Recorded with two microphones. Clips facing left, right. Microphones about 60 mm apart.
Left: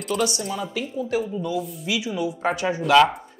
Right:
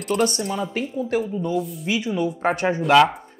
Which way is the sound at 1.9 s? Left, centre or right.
Right.